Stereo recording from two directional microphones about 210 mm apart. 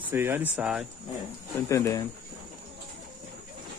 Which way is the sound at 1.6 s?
15° left (ahead or behind).